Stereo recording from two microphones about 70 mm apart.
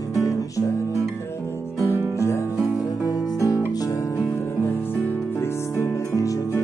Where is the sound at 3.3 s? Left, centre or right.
Left.